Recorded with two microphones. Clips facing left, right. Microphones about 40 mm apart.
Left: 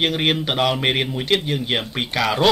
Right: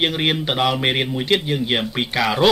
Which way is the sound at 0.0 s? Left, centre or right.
Centre.